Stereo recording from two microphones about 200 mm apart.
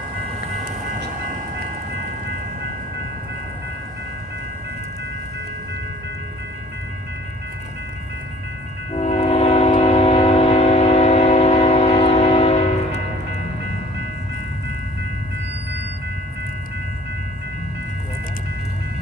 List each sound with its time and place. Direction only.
8.9 s train: 30° left (ahead or behind)